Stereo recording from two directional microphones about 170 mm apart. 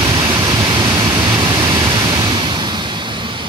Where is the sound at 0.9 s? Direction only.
25° right (ahead or behind).